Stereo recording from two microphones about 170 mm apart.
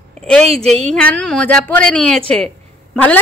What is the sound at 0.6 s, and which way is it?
Speech, 40° right (ahead or behind).